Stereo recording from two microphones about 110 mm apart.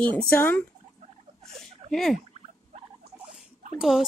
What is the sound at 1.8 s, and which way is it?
Speech, centre (ahead or behind).